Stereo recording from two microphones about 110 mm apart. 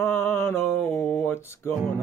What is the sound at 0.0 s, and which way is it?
Mantra, 20° left (ahead or behind).